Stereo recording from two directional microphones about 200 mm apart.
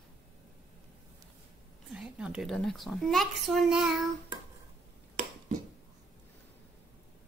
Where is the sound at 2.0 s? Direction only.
5° right (ahead or behind).